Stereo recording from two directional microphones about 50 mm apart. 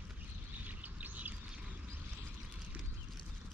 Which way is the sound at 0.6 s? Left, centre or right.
Right.